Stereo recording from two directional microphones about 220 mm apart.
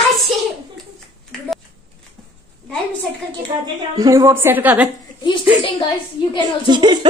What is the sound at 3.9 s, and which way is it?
Speech, 15° right (ahead or behind).